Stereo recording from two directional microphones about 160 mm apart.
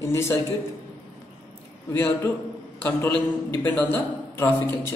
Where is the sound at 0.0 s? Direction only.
15° left (ahead or behind).